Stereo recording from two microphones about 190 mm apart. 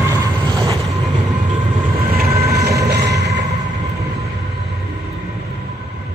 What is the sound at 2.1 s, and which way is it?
Train, 55° right (ahead or behind).